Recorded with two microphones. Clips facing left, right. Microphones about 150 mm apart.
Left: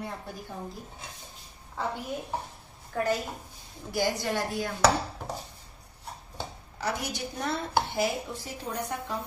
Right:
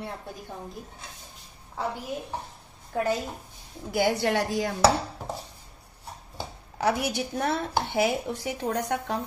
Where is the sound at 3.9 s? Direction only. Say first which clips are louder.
Right 4 dB; 65° right (ahead or behind).